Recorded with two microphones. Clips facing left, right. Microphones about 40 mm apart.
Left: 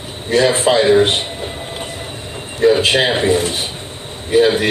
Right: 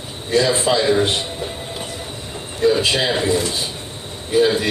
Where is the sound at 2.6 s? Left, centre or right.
Left.